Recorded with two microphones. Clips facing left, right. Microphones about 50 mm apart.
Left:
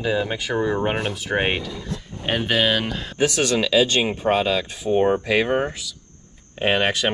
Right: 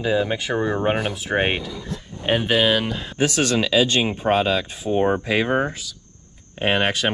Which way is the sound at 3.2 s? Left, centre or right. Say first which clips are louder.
Even; right.